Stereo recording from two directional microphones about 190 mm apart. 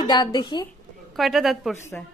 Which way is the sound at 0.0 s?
20° left (ahead or behind).